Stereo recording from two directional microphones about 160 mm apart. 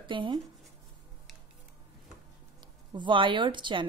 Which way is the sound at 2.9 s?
30° right (ahead or behind).